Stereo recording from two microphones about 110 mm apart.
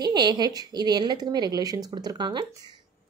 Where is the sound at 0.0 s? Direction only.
40° right (ahead or behind).